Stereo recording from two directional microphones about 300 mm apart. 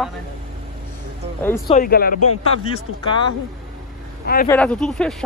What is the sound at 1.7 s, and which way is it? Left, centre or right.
Speech, left.